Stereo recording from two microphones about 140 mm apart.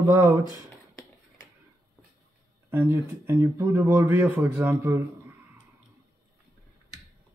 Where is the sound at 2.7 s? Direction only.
15° right (ahead or behind).